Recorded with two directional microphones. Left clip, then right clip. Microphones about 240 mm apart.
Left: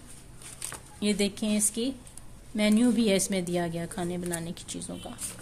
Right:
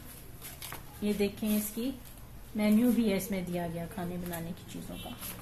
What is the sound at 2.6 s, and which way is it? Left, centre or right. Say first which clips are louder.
A woman's voice: left 3 dB; left.